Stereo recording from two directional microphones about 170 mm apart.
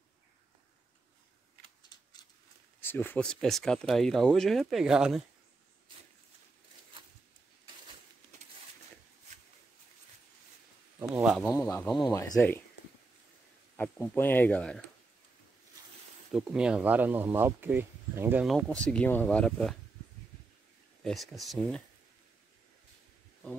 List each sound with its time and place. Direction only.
2.8 s speech: 10° left (ahead or behind); by 5.2 s 5° right (ahead or behind)
11.1 s speech: 5° right (ahead or behind)
11.4 s speech: 15° left (ahead or behind)
13.7 s speech: 10° left (ahead or behind)
16.3 s speech: centre (ahead or behind)
18.5 s speech: 5° left (ahead or behind)
21.0 s speech: centre (ahead or behind)